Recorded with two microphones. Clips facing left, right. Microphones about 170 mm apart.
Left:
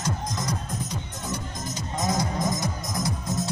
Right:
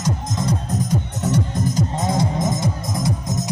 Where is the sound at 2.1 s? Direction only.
25° right (ahead or behind).